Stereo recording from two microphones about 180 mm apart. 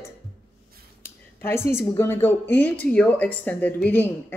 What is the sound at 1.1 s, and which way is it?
A woman's voice, 15° left (ahead or behind).